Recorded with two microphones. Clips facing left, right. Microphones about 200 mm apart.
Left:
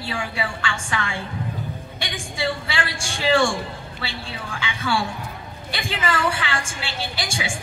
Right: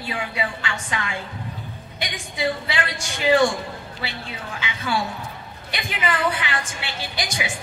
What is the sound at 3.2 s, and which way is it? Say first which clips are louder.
Speech: right 2 dB; 20° right (ahead or behind).